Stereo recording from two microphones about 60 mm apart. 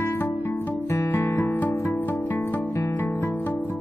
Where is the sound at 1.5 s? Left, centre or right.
Left.